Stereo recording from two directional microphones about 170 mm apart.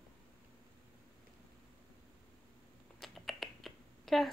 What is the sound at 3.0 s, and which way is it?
Finger snapping, centre (ahead or behind).